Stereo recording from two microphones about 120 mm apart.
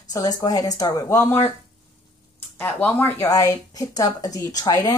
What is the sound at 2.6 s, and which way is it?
Speech, 15° left (ahead or behind).